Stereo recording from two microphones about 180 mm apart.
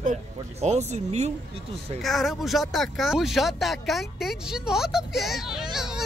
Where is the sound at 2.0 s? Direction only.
Centre (ahead or behind).